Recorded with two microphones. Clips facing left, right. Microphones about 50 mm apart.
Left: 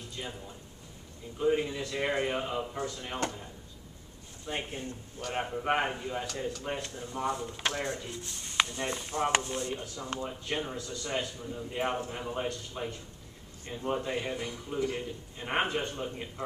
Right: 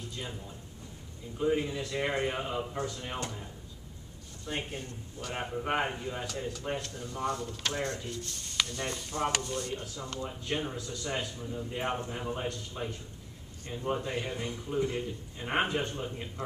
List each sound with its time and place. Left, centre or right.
0.2 s a man's voice: centre
1.4 s a man's voice: centre
4.5 s a man's voice: centre
6.8 s a man's voice: centre
10.2 s a man's voice: centre
14.4 s a man's voice: centre
15.0 s a man's voice: centre